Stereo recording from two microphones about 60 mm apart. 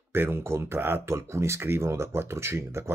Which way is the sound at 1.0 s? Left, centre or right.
Right.